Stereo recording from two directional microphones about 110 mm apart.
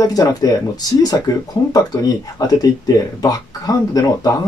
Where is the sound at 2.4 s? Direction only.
35° left (ahead or behind).